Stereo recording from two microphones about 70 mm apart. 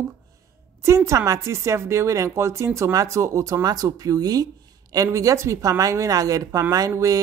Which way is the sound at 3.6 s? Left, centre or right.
Right.